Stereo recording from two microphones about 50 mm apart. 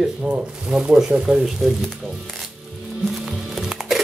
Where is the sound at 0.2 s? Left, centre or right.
Centre.